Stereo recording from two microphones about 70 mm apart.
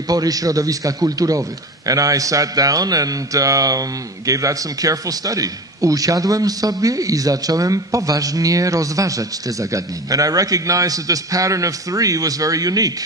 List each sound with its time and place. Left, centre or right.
0.1 s a man's voice: right